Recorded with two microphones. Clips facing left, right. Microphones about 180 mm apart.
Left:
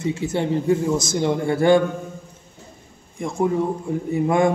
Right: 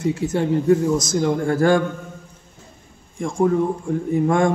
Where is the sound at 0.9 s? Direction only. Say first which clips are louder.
Right 1 dB; 25° left (ahead or behind).